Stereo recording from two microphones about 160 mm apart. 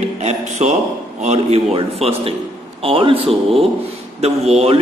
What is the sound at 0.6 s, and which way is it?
A man's voice, 45° right (ahead or behind).